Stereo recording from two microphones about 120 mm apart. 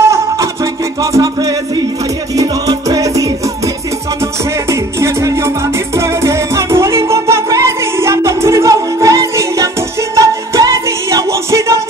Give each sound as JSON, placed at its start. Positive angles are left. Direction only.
{"t": 1.1, "sound": "music", "side_deg": -30}